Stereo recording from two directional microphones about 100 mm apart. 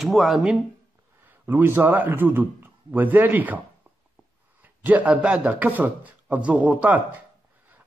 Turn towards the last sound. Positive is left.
turn(degrees=-15)  # may be behind; listen again after turning